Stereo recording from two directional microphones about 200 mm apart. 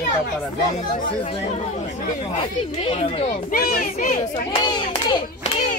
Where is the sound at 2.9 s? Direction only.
30° left (ahead or behind).